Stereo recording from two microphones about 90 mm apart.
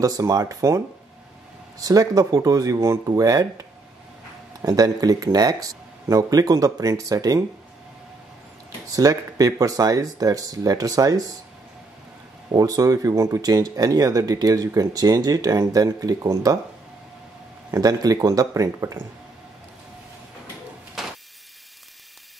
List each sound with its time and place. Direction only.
0.0 s speech: 40° right (ahead or behind)
8.8 s speech: 45° right (ahead or behind)
12.4 s speech: 40° right (ahead or behind)
17.6 s speech: 40° right (ahead or behind)
21.0 s a sound: 5° right (ahead or behind)